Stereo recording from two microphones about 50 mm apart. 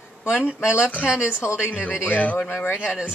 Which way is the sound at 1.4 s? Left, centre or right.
Left.